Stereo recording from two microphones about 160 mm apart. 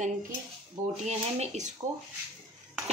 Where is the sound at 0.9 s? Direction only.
45° right (ahead or behind).